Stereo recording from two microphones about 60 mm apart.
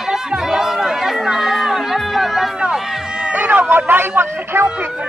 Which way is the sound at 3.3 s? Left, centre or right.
Right.